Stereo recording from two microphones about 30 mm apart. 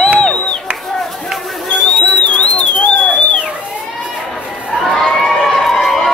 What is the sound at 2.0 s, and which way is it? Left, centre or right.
Music, left.